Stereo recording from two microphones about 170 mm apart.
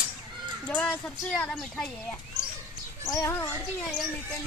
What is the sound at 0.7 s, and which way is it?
Speech, 5° left (ahead or behind).